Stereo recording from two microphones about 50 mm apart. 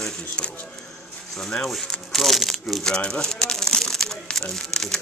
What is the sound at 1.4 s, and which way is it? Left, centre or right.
Speech, centre.